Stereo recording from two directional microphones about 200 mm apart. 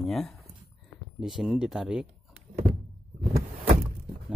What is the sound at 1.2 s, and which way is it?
Speech, centre (ahead or behind).